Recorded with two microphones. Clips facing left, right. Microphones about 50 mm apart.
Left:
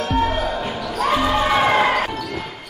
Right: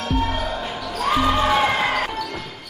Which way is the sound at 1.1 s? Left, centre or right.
Centre.